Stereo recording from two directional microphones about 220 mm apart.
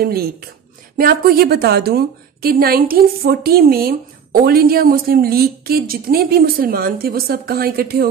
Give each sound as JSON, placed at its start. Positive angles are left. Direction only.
{"t": 0.0, "sound": "a woman's voice", "side_deg": -45}